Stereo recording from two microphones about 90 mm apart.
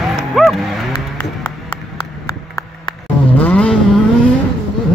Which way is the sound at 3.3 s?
15° left (ahead or behind).